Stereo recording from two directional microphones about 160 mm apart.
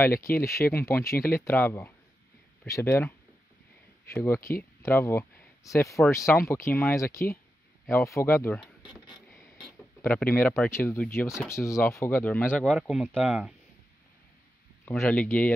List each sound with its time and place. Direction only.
0.5 s speech: 15° left (ahead or behind)
9.1 s a sound: centre (ahead or behind)
10.0 s speech: 10° left (ahead or behind)
12.6 s speech: centre (ahead or behind)
14.9 s speech: 10° left (ahead or behind)